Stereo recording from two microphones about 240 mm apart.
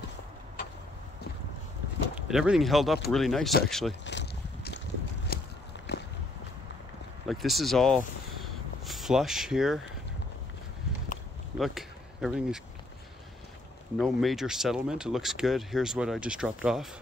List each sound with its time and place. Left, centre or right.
2.1 s speech: centre
4.0 s boat: left
5.3 s walk: left
7.2 s speech: centre
11.5 s speech: centre
13.9 s speech: centre